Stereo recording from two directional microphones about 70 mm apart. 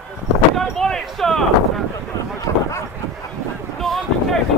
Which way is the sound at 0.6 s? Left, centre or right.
Centre.